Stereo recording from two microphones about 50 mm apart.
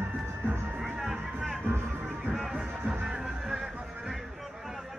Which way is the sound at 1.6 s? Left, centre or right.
Right.